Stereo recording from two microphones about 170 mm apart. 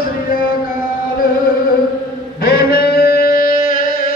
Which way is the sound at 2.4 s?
70° left (ahead or behind).